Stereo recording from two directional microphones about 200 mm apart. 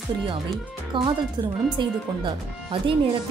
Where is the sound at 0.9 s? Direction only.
25° right (ahead or behind).